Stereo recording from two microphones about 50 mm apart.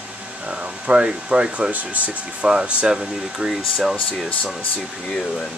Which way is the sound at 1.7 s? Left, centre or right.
Right.